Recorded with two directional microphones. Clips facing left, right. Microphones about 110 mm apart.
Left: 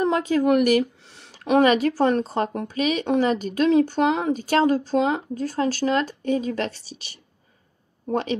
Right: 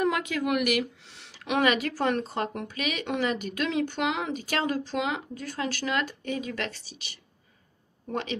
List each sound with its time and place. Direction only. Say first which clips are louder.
0.0 s speech: left 6 dB; 35° left (ahead or behind)